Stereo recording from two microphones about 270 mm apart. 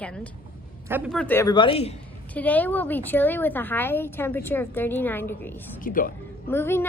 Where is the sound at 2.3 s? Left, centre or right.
Centre.